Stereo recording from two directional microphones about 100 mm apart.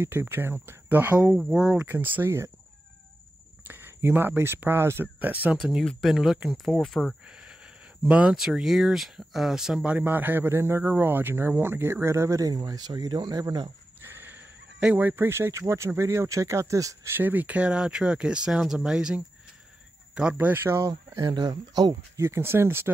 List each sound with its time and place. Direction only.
0.0 s speech: 25° right (ahead or behind)
3.6 s speech: 20° right (ahead or behind)
5.9 s speech: centre (ahead or behind)
7.2 s a sound: 10° right (ahead or behind)
8.0 s speech: 15° right (ahead or behind)
8.5 s speech: 5° right (ahead or behind); by 13.7 s 40° right (ahead or behind)
14.0 s a sound: 20° right (ahead or behind)
14.8 s speech: 15° right (ahead or behind)
21.2 s speech: 45° right (ahead or behind)
22.2 s speech: 25° right (ahead or behind)